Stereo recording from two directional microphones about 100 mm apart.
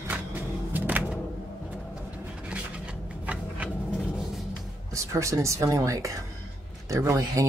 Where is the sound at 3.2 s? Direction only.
15° right (ahead or behind).